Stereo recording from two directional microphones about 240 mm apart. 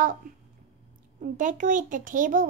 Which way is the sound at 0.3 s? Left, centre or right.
Right.